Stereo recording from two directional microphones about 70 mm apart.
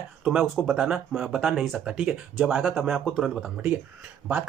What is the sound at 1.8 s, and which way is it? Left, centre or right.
Speech, centre.